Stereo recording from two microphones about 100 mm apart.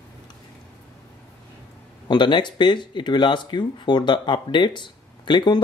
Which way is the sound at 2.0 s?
50° left (ahead or behind).